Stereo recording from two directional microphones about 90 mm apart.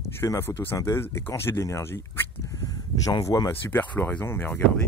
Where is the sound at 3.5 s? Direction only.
20° left (ahead or behind).